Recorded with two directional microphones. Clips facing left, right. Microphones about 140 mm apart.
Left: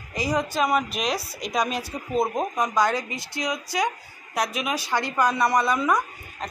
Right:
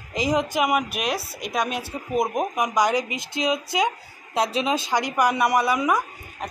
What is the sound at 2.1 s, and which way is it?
Speech, 15° right (ahead or behind).